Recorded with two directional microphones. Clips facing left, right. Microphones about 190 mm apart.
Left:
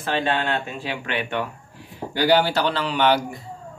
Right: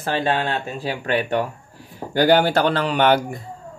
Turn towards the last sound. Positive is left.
turn(degrees=-50)  # may be behind; listen again after turning